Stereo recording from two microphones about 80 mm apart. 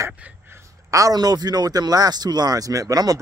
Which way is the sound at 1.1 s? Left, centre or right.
Right.